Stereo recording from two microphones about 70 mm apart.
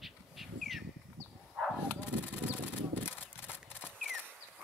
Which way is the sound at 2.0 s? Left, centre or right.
Left.